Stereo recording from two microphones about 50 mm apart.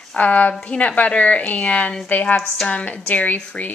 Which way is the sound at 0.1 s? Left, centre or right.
Left.